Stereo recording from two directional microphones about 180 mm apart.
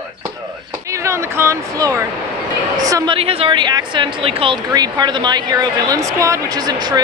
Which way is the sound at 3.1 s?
30° right (ahead or behind).